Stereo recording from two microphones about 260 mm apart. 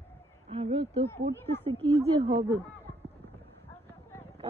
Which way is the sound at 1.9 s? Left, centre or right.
Right.